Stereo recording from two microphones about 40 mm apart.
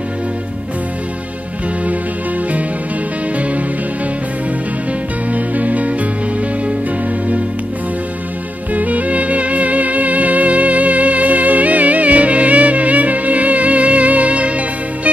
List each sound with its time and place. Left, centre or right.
3.3 s music: right
5.3 s music: right
8.7 s music: right